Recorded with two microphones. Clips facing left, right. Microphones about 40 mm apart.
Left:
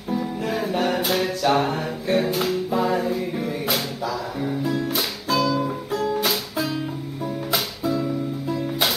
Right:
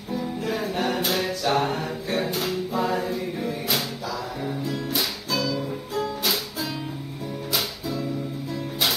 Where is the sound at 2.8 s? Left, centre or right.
Centre.